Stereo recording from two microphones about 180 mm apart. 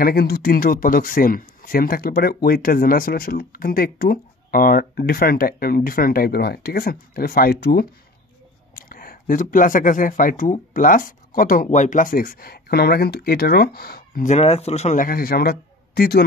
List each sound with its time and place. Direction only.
0.0 s speech: 55° left (ahead or behind)